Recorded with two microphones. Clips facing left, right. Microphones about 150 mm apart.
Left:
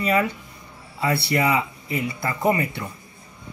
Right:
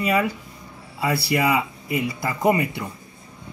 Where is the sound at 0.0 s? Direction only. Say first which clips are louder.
Even; 5° right (ahead or behind).